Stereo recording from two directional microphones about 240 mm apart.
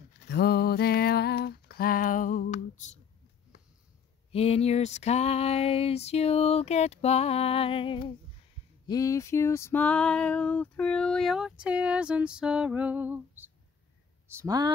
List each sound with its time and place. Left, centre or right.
0.3 s music: left
4.3 s a sound: left
8.8 s female singing: centre
14.2 s speech: centre